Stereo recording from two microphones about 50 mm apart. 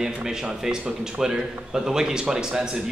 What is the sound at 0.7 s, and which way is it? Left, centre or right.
Speech, centre.